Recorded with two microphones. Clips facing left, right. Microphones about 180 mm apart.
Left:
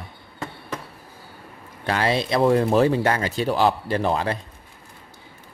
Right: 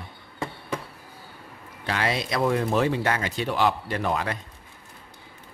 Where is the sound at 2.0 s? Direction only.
30° left (ahead or behind).